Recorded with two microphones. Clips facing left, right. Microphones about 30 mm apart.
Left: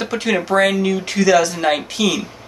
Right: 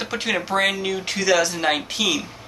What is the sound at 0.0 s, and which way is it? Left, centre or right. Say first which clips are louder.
Speech: left 5 dB; centre.